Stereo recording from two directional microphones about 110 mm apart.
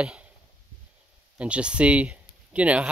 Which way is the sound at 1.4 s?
10° right (ahead or behind).